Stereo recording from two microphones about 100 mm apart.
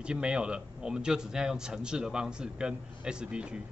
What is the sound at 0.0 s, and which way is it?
A man's voice, 10° right (ahead or behind).